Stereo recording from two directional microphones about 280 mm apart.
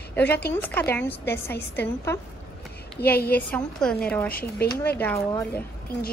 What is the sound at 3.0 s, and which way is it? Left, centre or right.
Speech, centre.